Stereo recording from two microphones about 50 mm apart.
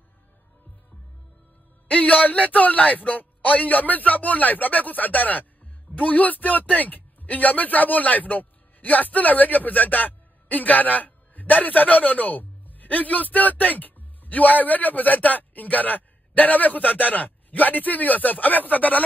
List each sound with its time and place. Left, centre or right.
1.9 s a man's voice: left